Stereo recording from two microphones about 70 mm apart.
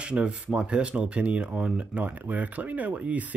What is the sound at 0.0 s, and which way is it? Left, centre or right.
Speech, centre.